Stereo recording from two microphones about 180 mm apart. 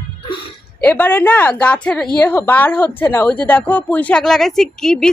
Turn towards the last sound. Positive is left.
turn(degrees=5)  # may be behind; listen again after turning